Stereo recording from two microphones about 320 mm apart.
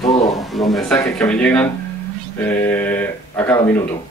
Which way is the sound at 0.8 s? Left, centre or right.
Centre.